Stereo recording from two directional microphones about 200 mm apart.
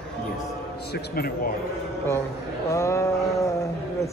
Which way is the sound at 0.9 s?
50° left (ahead or behind).